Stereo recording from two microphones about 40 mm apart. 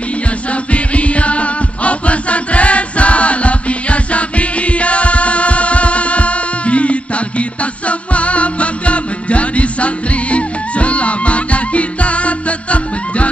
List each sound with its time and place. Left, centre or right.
0.5 s music: left